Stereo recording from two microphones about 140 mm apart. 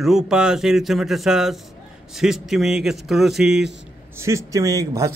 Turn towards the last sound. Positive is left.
turn(degrees=-25)  # may be behind; listen again after turning